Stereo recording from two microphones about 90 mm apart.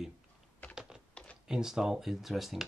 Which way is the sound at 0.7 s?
10° right (ahead or behind).